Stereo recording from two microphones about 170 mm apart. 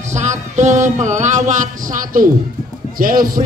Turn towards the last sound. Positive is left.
turn(degrees=-55)  # may be behind; listen again after turning